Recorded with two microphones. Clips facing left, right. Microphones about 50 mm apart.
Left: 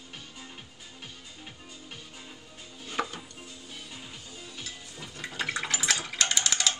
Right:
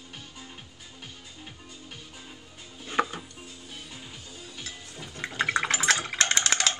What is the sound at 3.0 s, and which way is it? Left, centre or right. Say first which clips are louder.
Chopping: right 5 dB; right.